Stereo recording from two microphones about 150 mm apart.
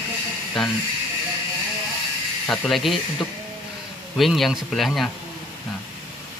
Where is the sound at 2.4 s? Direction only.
5° left (ahead or behind).